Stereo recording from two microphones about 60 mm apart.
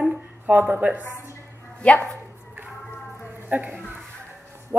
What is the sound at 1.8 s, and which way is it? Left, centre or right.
Speech, left.